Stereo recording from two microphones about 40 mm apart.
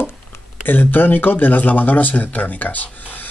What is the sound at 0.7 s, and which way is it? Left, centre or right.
Speech, left.